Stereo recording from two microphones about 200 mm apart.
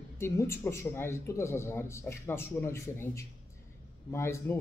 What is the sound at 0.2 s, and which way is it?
Speech, 15° left (ahead or behind).